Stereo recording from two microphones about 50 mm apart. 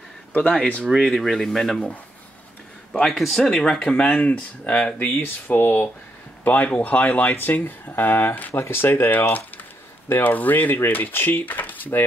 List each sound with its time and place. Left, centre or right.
0.3 s speech: left
1.0 s speech: centre
3.1 s speech: centre
3.9 s speech: left
4.9 s speech: left
8.5 s speech: left